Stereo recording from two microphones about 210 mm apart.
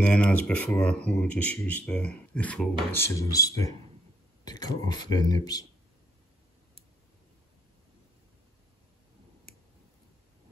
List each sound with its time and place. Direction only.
0.0 s speech: 5° left (ahead or behind)